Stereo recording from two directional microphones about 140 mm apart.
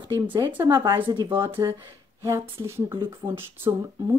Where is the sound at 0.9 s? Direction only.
30° right (ahead or behind).